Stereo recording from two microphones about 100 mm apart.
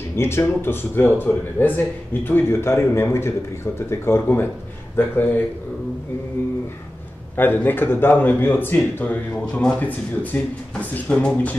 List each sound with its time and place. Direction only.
0.1 s speech: 25° left (ahead or behind)
7.3 s speech: 20° left (ahead or behind)